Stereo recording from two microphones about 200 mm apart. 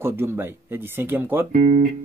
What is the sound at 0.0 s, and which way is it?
Speech, 10° right (ahead or behind).